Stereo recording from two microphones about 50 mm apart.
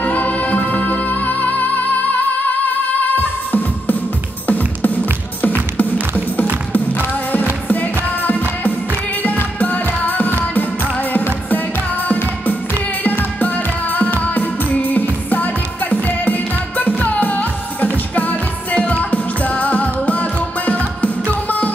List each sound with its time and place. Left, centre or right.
0.0 s music: left
3.2 s music: left
7.6 s music: left
9.6 s music: left
13.0 s music: left